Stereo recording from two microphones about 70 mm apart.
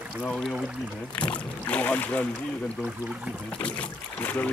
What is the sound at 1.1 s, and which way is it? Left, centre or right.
Speech, centre.